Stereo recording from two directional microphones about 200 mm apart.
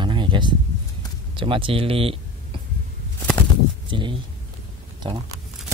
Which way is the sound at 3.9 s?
25° right (ahead or behind).